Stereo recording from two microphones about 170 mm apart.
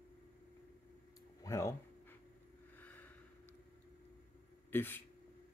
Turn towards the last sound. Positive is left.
turn(degrees=10)  # may be behind; listen again after turning